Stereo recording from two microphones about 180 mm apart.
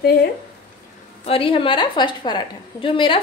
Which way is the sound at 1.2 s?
30° left (ahead or behind).